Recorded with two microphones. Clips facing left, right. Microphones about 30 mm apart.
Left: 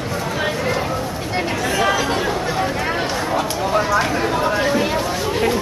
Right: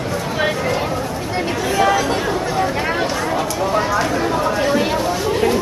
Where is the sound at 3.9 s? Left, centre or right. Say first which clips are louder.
Even; centre.